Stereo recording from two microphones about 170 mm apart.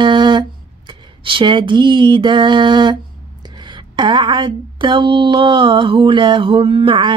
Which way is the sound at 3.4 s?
25° right (ahead or behind).